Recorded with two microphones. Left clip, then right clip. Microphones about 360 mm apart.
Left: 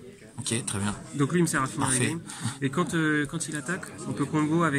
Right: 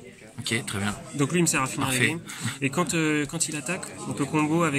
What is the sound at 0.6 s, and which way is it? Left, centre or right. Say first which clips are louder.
Speech: right 3 dB; centre.